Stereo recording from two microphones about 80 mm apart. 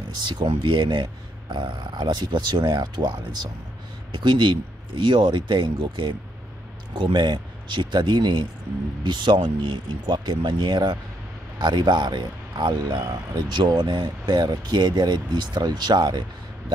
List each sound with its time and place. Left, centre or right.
0.1 s speech: right
4.1 s speech: right
10.1 s speech: right
13.5 s speech: right